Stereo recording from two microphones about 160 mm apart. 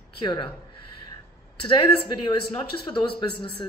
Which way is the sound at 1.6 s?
30° left (ahead or behind).